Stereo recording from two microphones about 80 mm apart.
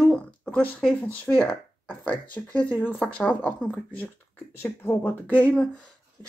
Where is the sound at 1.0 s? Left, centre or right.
Left.